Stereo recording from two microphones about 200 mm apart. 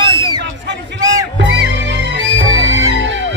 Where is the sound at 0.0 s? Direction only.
20° right (ahead or behind).